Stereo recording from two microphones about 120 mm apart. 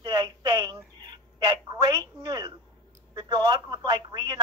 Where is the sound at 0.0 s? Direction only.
35° right (ahead or behind).